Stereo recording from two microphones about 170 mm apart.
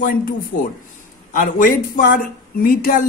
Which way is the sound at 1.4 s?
55° left (ahead or behind).